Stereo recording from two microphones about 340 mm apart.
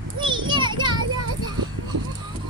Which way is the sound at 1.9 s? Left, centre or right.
Right.